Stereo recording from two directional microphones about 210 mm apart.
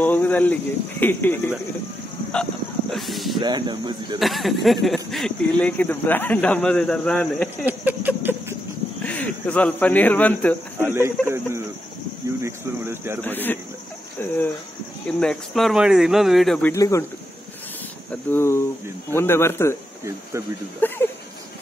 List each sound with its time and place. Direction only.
0.0 s speech: 10° left (ahead or behind)
2.9 s a sound: centre (ahead or behind)
3.3 s speech: 20° right (ahead or behind)
4.2 s speech: centre (ahead or behind)
7.6 s a sound: 10° right (ahead or behind)
9.0 s speech: 5° left (ahead or behind)
10.8 s a sound: 10° right (ahead or behind)
11.2 s speech: 10° right (ahead or behind)
13.2 s speech: 10° left (ahead or behind)
18.3 s speech: 10° left (ahead or behind)
20.8 s speech: 10° left (ahead or behind)